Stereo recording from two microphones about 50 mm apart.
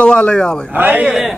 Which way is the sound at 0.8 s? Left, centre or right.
Right.